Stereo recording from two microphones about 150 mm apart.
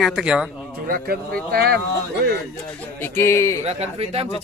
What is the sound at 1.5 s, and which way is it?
Speech, 90° right.